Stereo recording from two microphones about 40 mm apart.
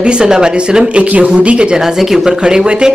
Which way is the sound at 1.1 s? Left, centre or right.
Right.